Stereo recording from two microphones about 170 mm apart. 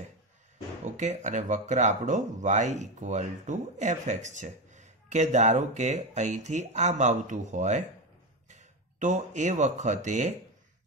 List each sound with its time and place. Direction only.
0.8 s speech: 45° right (ahead or behind)